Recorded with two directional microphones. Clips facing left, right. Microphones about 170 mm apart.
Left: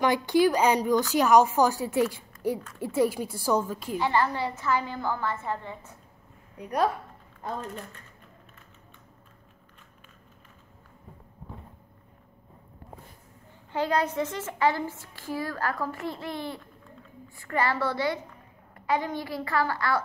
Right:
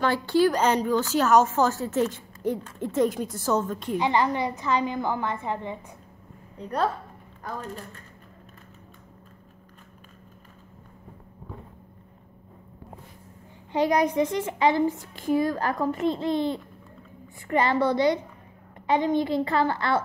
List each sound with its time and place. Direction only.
0.0 s a woman's voice: 15° left (ahead or behind)
4.0 s a woman's voice: 20° right (ahead or behind)
6.6 s a woman's voice: 15° left (ahead or behind)
7.4 s speech: 25° left (ahead or behind)
13.7 s a woman's voice: 15° right (ahead or behind)